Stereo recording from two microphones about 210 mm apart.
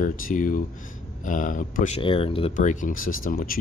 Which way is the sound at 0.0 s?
40° left (ahead or behind).